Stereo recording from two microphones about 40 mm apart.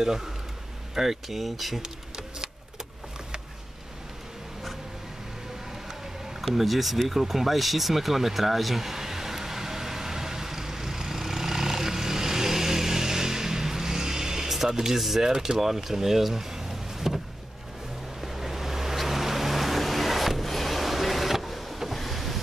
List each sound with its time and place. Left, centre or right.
0.9 s speech: centre
1.8 s bee: centre
6.4 s a sound: centre
14.7 s speech: centre
18.2 s vehicle: centre